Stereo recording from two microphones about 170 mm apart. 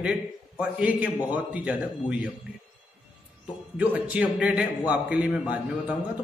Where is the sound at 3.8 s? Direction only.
10° right (ahead or behind).